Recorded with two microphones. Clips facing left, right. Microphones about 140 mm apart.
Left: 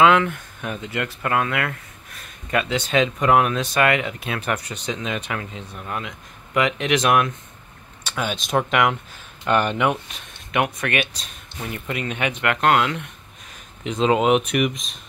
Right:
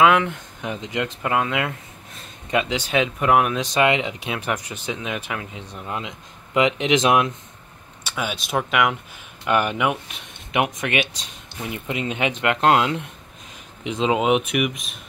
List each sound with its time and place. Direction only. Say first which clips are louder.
0.0 s speech: left 1 dB; 10° right (ahead or behind)
5.8 s speech: right 1 dB; 20° right (ahead or behind)
8.1 s speech: left 2 dB; 5° right (ahead or behind)
10.5 s speech: even; 20° right (ahead or behind)
13.8 s speech: left 2 dB; 10° right (ahead or behind)